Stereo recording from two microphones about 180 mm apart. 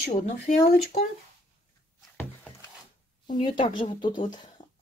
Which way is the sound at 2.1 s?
10° left (ahead or behind).